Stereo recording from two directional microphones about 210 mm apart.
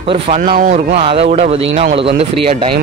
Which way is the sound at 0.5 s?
40° right (ahead or behind).